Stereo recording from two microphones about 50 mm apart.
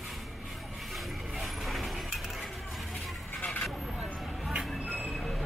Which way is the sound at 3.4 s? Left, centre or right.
Left.